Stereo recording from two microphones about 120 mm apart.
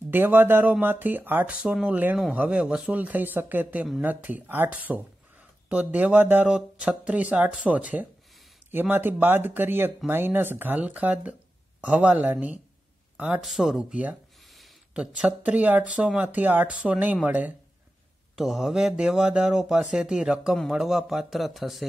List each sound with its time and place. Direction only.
0.1 s speech: 15° right (ahead or behind)
18.3 s speech: 5° right (ahead or behind)